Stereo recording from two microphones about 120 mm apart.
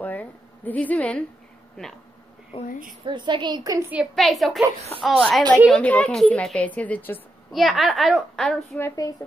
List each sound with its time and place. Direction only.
0.0 s a sound: 15° left (ahead or behind)
2.5 s speech: 45° left (ahead or behind)
3.1 s a woman's voice: 40° right (ahead or behind)
4.1 s a woman's voice: centre (ahead or behind)
7.5 s a woman's voice: centre (ahead or behind)
8.7 s a woman's voice: 25° left (ahead or behind)